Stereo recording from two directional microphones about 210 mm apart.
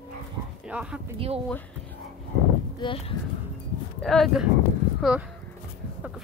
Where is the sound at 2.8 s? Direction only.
20° left (ahead or behind).